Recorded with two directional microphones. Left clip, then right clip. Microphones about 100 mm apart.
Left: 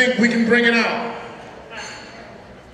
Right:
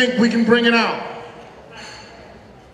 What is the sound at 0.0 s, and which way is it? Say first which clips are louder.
Speech: even; 40° left (ahead or behind).